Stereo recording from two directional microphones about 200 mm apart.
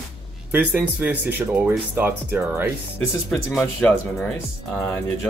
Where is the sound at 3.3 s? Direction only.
5° left (ahead or behind).